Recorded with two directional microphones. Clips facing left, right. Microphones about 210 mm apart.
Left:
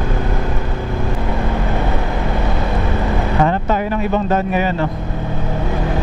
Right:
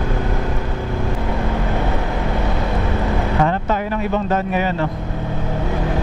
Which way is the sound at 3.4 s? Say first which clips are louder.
Left 4 dB; 10° left (ahead or behind).